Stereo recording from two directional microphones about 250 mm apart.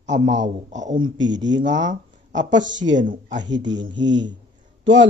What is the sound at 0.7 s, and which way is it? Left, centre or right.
Speech, right.